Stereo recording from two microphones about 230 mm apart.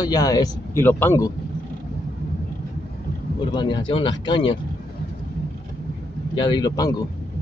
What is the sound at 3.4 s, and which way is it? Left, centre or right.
Speech, centre.